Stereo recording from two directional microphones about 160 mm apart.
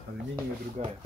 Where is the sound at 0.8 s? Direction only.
50° right (ahead or behind).